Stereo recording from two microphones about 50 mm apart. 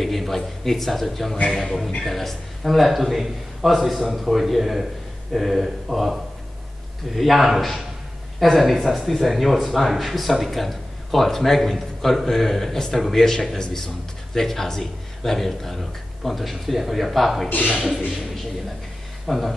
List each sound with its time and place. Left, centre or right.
0.0 s speech: centre
17.5 s speech: left
19.2 s speech: centre